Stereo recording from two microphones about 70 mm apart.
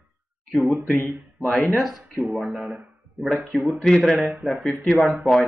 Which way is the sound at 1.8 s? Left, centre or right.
Centre.